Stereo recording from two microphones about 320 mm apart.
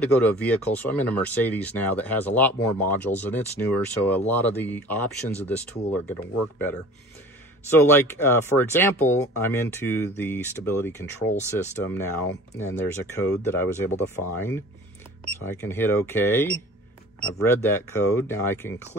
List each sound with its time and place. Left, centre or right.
0.0 s speech: centre
7.7 s speech: centre